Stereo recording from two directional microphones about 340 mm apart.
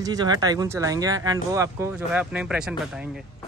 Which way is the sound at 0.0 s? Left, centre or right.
Centre.